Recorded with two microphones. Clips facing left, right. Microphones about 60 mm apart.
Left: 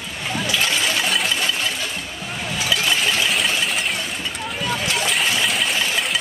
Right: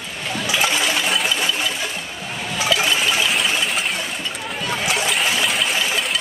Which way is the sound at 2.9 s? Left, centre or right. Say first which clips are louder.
Right 1 dB; centre.